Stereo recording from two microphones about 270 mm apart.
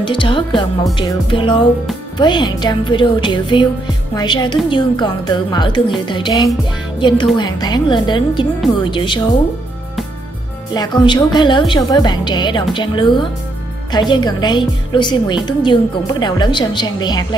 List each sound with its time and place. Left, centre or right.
0.0 s a woman's voice: centre
0.9 s music: centre
2.1 s a woman's voice: centre
10.7 s a woman's voice: centre